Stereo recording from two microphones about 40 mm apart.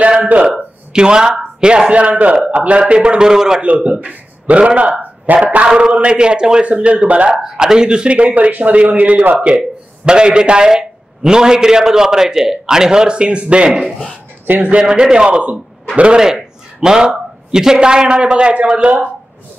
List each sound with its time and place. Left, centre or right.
0.2 s speech: right
0.5 s a man's voice: right
3.6 s speech: right
5.9 s a man's voice: right
6.6 s speech: right
7.5 s a man's voice: centre; by 9.2 s right
9.5 s a man's voice: right
13.7 s a man's voice: centre
16.8 s a man's voice: centre